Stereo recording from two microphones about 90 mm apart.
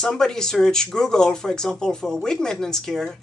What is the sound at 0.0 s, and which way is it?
Speech, 5° left (ahead or behind).